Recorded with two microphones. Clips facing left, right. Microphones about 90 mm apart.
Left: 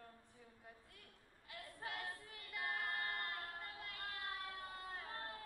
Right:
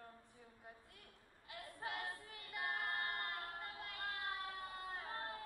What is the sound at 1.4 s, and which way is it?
Female singing, 15° right (ahead or behind).